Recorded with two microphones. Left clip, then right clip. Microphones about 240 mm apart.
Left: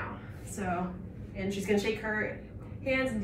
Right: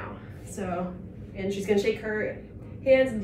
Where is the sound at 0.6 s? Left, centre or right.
Centre.